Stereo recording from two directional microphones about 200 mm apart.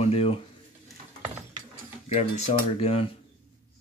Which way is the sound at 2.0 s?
30° left (ahead or behind).